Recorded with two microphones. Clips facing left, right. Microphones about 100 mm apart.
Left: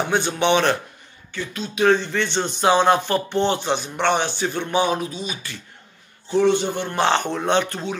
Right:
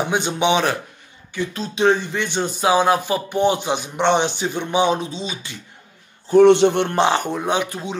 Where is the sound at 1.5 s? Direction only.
25° right (ahead or behind).